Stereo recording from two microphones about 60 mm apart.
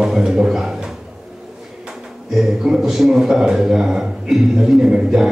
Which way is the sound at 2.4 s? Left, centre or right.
Centre.